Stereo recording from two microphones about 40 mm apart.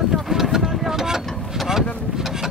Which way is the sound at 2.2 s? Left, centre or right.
Centre.